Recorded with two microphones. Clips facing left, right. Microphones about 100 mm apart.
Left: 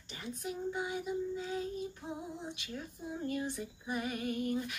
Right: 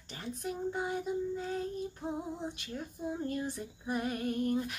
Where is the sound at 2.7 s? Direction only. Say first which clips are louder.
Right 5 dB; 40° right (ahead or behind).